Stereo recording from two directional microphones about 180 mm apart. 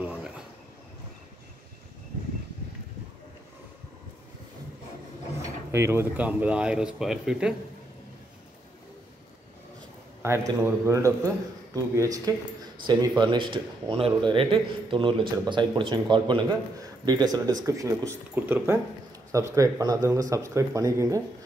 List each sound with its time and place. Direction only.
0.0 s train: 5° right (ahead or behind)
5.4 s speech: 15° right (ahead or behind)
10.2 s a man's voice: 15° right (ahead or behind)